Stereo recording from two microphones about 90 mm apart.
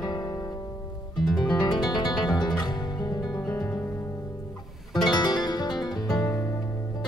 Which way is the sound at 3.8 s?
25° left (ahead or behind).